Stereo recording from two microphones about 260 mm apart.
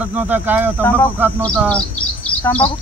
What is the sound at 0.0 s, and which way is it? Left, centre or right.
Speech, centre.